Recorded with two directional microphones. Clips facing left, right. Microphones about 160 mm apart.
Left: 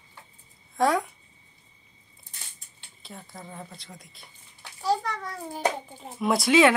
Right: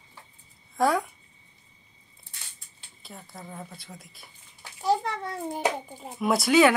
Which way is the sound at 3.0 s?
Centre (ahead or behind).